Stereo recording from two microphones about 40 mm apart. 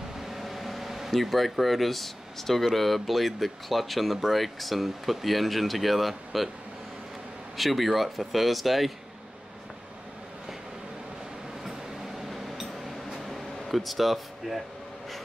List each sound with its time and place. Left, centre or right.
0.2 s speech: centre
7.5 s speech: centre
12.3 s a sound: centre
13.2 s music: centre